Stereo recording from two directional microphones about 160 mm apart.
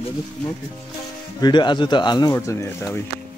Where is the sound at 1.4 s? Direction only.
30° left (ahead or behind).